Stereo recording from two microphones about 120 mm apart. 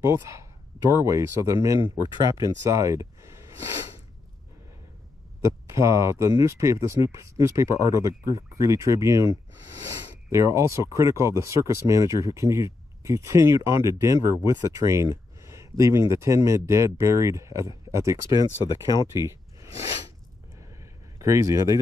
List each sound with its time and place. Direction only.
0.0 s speech: 25° right (ahead or behind)
2.6 s a sound: 25° right (ahead or behind)
5.4 s speech: 25° right (ahead or behind)
18.3 s speech: 35° left (ahead or behind)
21.2 s speech: 25° right (ahead or behind)